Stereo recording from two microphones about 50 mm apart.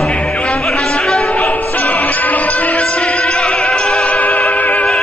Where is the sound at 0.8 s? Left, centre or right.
Centre.